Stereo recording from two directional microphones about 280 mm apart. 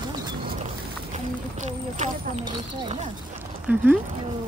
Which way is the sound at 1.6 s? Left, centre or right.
Right.